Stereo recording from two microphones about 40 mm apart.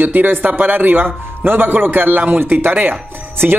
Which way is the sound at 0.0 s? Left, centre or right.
Right.